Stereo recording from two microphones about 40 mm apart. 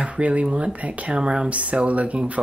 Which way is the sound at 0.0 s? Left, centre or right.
Right.